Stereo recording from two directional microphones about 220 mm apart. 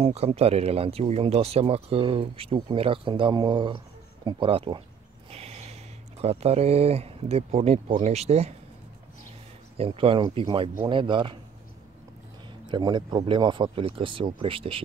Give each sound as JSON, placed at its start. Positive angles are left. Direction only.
{"t": 0.0, "sound": "speech", "side_deg": -30}
{"t": 5.3, "sound": "a sound", "side_deg": -30}
{"t": 6.2, "sound": "speech", "side_deg": -30}
{"t": 9.8, "sound": "speech", "side_deg": -25}
{"t": 12.6, "sound": "speech", "side_deg": -20}